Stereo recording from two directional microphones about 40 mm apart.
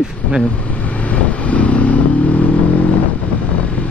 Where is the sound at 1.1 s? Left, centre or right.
Left.